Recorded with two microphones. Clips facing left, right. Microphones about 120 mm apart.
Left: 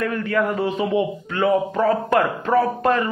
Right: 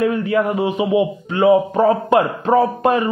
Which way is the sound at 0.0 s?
20° right (ahead or behind).